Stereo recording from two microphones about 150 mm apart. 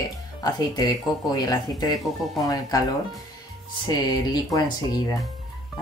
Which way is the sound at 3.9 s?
30° left (ahead or behind).